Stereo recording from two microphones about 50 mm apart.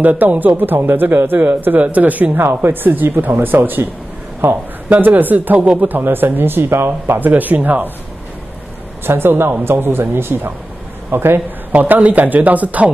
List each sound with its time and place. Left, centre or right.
0.0 s speech: right
2.3 s speech: right
5.6 s speech: right
5.9 s speech: right
7.2 s speech: right
9.0 s speech: right
11.7 s speech: right